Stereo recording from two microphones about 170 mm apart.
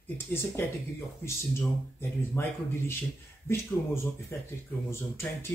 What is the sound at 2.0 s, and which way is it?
Speech, 15° left (ahead or behind).